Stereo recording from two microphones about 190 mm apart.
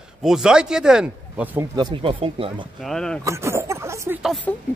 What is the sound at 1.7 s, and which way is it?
Speech, 25° right (ahead or behind).